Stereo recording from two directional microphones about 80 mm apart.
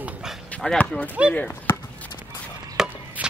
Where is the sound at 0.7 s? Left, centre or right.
Centre.